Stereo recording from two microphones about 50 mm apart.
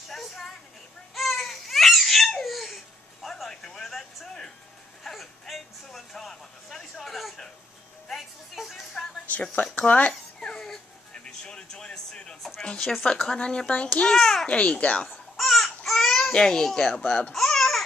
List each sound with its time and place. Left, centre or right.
0.1 s a sound: centre
1.1 s babbling: centre
3.4 s a sound: centre
5.1 s whimper: centre
5.9 s a sound: centre
8.1 s music: centre
9.8 s speech: left
10.4 s music: centre
13.0 s a child's voice: centre
14.1 s a child's voice: centre
14.4 s speech: left
15.3 s baby cry: centre
16.3 s a child's voice: centre
17.3 s babbling: centre